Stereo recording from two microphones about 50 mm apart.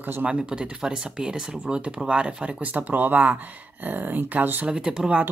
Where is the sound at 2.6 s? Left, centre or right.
Right.